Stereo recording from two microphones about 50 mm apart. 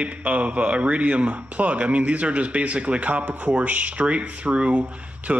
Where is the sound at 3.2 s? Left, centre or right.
Right.